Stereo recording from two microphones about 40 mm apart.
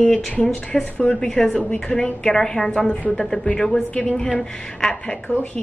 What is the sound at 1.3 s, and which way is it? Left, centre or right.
A woman's voice, left.